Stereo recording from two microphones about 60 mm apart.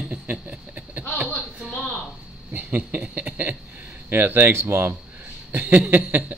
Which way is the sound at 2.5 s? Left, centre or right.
Right.